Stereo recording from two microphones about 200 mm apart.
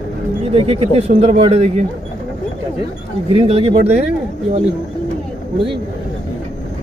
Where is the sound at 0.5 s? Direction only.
30° right (ahead or behind).